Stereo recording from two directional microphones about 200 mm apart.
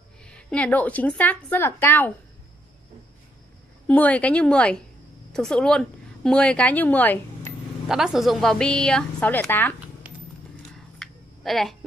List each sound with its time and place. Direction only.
0.2 s a woman's voice: 5° left (ahead or behind)
3.8 s a woman's voice: 5° left (ahead or behind)
7.9 s a woman's voice: centre (ahead or behind)
11.0 s finger snapping: centre (ahead or behind)